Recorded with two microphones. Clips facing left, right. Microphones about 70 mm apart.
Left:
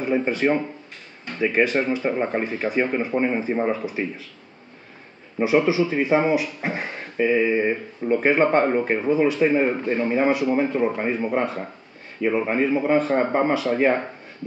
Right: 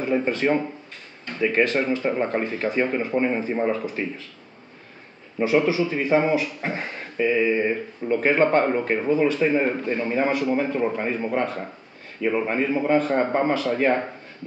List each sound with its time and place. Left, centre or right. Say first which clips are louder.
0.0 s speech: left 1 dB; centre
5.4 s speech: left 1 dB; centre